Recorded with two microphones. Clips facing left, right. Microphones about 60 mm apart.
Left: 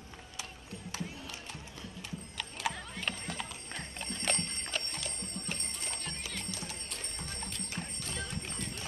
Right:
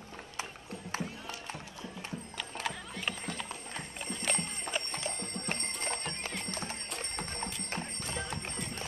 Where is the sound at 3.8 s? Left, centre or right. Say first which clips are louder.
Left 1 dB; centre.